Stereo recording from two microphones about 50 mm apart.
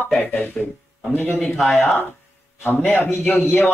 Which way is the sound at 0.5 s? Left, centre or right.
Centre.